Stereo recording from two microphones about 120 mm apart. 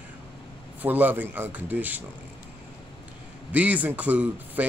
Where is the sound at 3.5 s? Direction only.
15° right (ahead or behind).